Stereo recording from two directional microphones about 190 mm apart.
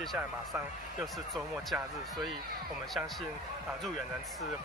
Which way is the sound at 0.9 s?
Centre (ahead or behind).